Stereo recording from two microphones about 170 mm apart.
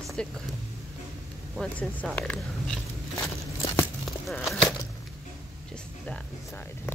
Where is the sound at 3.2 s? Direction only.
15° left (ahead or behind).